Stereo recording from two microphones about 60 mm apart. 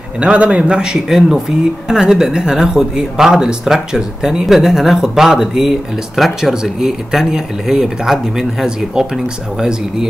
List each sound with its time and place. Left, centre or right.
0.2 s speech: centre